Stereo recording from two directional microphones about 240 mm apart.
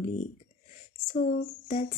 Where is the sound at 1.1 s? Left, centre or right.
Left.